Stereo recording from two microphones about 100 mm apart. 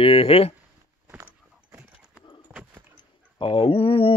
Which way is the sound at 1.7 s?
5° right (ahead or behind).